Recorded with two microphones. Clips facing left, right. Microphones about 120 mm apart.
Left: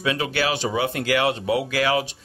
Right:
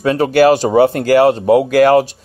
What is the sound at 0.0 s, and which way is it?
Speech, 45° right (ahead or behind).